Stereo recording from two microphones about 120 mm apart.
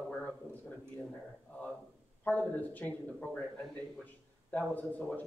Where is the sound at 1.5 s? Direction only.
15° left (ahead or behind).